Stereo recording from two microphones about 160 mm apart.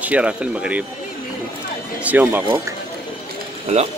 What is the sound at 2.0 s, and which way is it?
Speech, 10° right (ahead or behind).